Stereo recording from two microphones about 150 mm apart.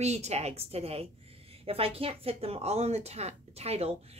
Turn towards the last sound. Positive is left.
turn(degrees=-45)  # may be behind; listen again after turning